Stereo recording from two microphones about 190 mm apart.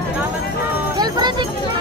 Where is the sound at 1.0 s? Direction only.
20° right (ahead or behind).